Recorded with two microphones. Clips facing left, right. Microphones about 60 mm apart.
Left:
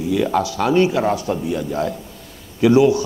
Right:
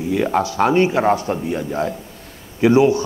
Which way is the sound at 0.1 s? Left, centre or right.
Right.